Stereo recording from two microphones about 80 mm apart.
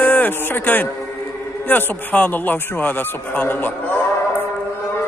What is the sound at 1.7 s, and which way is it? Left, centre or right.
A man's voice, left.